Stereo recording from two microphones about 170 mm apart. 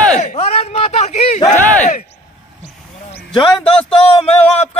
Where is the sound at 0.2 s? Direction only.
40° left (ahead or behind).